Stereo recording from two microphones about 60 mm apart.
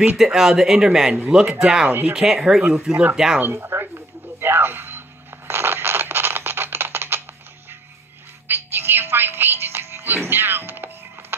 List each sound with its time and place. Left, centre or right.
0.2 s a man's voice: centre
1.9 s speech: right
2.1 s a man's voice: centre
3.3 s speech: right
3.6 s a sound: right
5.5 s scratch: right
8.5 s music: right